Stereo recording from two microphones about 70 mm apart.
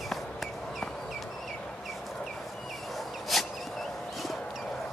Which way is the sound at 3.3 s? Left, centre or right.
Centre.